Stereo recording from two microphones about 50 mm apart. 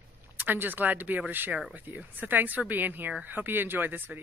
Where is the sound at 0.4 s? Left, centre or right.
Right.